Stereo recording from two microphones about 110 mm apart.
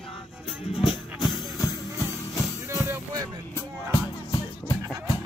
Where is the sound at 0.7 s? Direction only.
45° left (ahead or behind).